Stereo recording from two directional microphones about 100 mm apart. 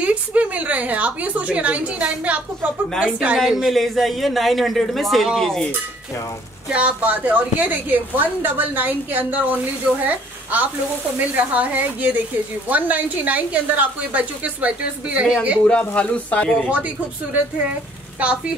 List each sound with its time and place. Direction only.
0.0 s a woman's voice: 15° right (ahead or behind)
3.3 s speech: centre (ahead or behind)
6.7 s speech: 15° right (ahead or behind)
15.6 s speech: 15° left (ahead or behind)